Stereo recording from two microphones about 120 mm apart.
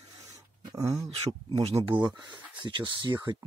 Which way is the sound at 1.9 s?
40° right (ahead or behind).